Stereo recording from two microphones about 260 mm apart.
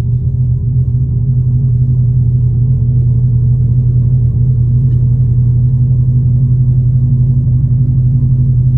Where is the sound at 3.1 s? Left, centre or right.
Left.